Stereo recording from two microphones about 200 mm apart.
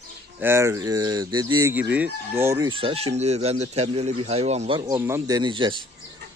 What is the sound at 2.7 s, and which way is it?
Speech, 25° right (ahead or behind).